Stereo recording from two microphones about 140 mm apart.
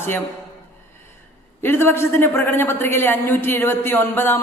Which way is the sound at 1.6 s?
15° left (ahead or behind).